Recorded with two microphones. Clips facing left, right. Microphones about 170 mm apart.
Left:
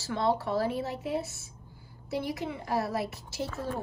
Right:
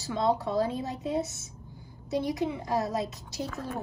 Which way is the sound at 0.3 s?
15° right (ahead or behind).